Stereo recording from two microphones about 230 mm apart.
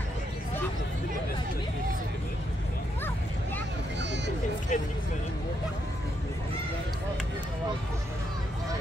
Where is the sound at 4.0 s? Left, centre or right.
Right.